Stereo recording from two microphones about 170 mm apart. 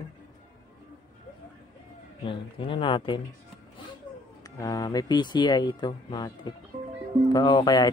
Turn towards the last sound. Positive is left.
turn(degrees=25)  # may be behind; listen again after turning